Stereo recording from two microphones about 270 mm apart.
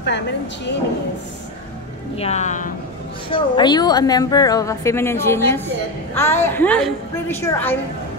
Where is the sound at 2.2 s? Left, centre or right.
Left.